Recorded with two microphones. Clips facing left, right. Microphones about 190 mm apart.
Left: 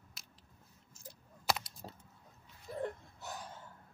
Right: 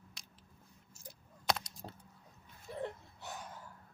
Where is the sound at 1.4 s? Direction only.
5° left (ahead or behind).